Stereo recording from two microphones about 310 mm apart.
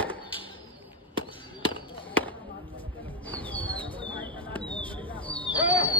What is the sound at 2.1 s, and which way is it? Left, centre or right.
Basketball bounce, centre.